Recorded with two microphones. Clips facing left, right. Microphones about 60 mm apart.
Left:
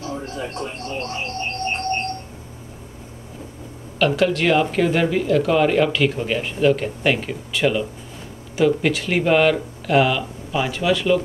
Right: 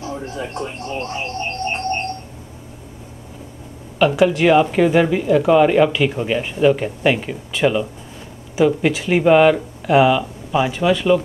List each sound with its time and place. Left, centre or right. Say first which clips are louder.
0.1 s television: right 1 dB; centre
0.7 s music: right 2 dB; centre
4.0 s speech: right 4 dB; centre